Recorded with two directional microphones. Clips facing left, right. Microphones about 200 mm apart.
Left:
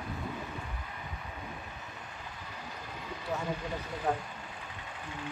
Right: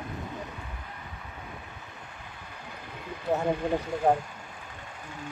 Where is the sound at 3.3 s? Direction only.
55° right (ahead or behind).